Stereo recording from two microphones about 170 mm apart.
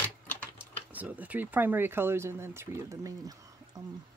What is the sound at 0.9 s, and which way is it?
Speech, 10° right (ahead or behind).